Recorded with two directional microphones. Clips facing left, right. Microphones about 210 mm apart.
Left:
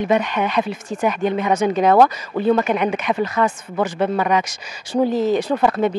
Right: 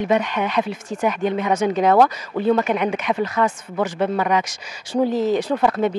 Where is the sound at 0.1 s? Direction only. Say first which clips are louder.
Left 1 dB; 15° left (ahead or behind).